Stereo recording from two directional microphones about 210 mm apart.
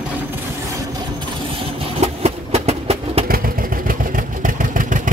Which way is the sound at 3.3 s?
45° right (ahead or behind).